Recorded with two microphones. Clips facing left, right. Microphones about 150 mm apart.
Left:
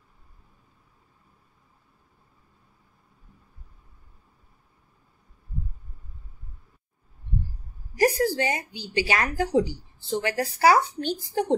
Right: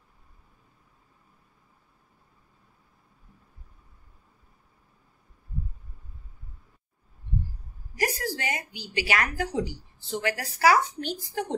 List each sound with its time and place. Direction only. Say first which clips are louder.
8.0 s a woman's voice: left 8 dB; 30° left (ahead or behind)